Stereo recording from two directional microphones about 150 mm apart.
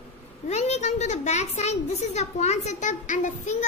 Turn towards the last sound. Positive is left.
turn(degrees=55)  # may be behind; listen again after turning